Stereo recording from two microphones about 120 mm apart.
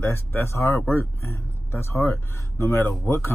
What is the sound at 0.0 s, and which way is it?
Speech, 20° left (ahead or behind).